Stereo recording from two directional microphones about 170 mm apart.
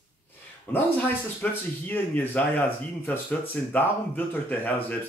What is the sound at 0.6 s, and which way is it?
Speech, 10° left (ahead or behind).